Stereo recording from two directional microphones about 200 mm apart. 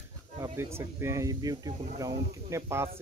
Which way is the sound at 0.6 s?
10° right (ahead or behind).